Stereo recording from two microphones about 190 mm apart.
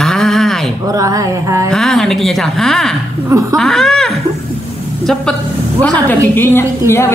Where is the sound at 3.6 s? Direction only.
Centre (ahead or behind).